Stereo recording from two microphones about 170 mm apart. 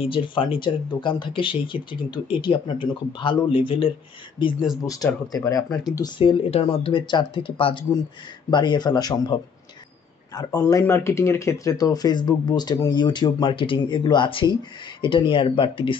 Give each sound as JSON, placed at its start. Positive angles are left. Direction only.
{"t": 0.0, "sound": "a man's voice", "side_deg": 30}